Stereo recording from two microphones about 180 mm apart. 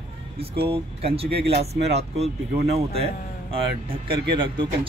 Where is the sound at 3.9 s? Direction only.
30° right (ahead or behind).